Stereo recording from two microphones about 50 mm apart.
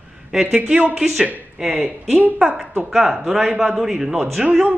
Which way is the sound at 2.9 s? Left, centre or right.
Centre.